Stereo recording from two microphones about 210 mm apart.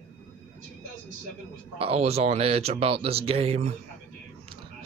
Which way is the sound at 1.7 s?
30° right (ahead or behind).